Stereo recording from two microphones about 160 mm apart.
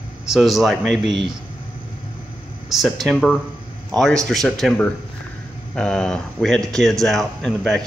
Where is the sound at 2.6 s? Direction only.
Centre (ahead or behind).